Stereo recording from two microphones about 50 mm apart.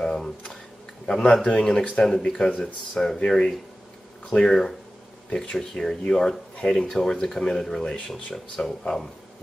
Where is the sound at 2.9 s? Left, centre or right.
Centre.